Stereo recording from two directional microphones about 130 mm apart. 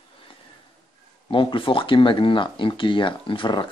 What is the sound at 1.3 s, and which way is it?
Speech, 40° left (ahead or behind).